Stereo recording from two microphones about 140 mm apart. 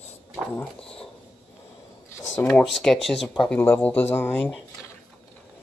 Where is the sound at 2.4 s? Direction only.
5° left (ahead or behind).